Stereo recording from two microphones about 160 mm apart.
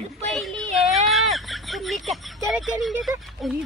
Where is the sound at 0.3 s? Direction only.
Centre (ahead or behind).